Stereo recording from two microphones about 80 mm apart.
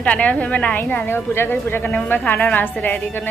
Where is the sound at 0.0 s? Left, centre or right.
Centre.